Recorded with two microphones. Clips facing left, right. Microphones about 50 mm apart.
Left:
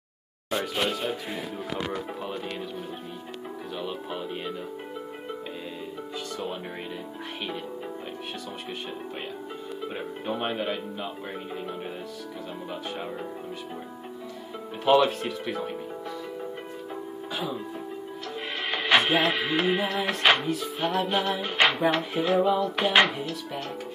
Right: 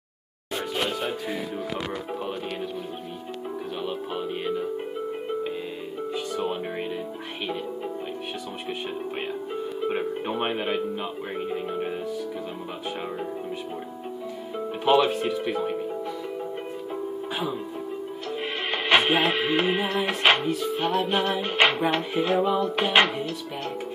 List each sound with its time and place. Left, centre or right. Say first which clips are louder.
3.8 s music: right 3 dB; centre
9.8 s speech: right 4 dB; right
14.9 s music: even; centre
18.7 s music: right 1 dB; centre